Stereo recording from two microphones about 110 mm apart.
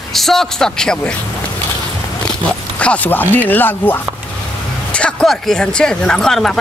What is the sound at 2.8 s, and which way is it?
Speech, 15° left (ahead or behind).